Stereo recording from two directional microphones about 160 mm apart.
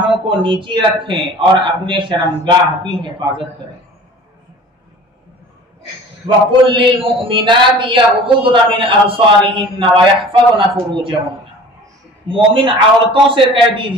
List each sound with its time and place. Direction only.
0.3 s a man's voice: 35° right (ahead or behind)
6.2 s a man's voice: 30° right (ahead or behind)
12.3 s a man's voice: 35° right (ahead or behind)